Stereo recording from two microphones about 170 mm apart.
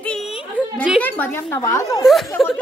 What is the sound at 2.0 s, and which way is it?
Speech, 5° left (ahead or behind).